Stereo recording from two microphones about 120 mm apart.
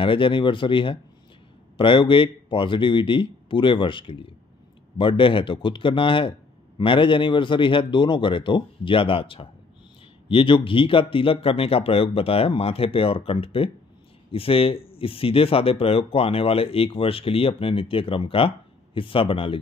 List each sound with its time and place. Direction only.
0.0 s speech: 45° left (ahead or behind)